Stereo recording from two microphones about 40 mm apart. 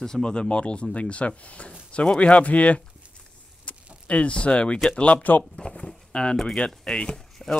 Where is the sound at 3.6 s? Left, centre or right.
Left.